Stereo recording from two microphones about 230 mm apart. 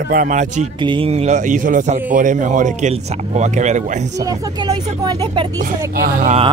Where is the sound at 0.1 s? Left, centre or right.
Right.